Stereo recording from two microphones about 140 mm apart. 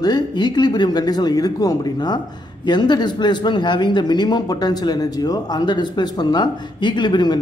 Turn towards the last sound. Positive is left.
turn(degrees=30)  # may be behind; listen again after turning